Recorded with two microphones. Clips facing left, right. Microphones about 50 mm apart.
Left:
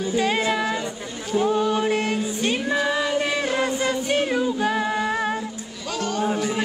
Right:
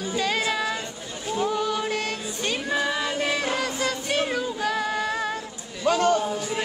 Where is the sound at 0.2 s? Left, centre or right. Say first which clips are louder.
Left 2 dB; left.